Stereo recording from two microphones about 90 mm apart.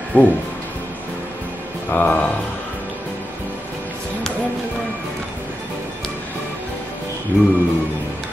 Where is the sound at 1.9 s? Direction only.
20° left (ahead or behind).